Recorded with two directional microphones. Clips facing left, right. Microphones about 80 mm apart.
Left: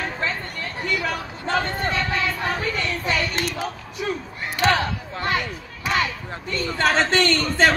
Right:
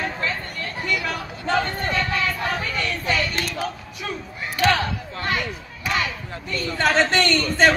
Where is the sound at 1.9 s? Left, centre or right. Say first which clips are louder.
Even; left.